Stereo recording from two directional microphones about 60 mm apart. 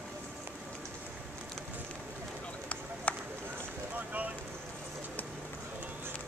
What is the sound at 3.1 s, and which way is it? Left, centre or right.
Run, left.